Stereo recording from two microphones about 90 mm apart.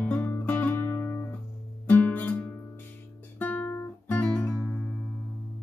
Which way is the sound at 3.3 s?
20° left (ahead or behind).